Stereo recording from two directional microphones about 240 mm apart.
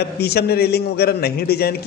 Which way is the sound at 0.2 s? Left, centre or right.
Left.